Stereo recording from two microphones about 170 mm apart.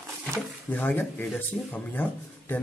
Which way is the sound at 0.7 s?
10° left (ahead or behind).